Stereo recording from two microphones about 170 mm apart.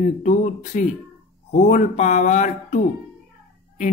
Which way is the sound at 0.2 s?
45° left (ahead or behind).